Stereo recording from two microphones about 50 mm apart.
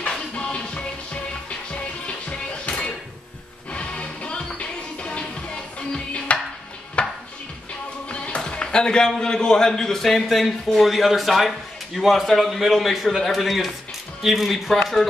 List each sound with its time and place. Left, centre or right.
0.4 s music: left
8.5 s a man's voice: centre